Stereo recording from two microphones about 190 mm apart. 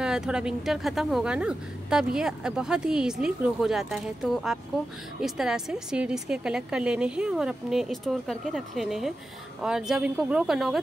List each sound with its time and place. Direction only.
0.0 s a woman's voice: 5° right (ahead or behind)